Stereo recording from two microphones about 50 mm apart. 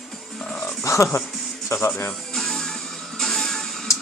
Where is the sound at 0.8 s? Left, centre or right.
Left.